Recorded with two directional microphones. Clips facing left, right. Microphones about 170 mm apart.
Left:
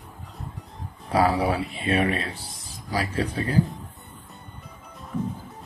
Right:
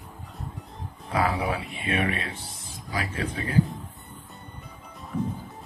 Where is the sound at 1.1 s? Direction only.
35° left (ahead or behind).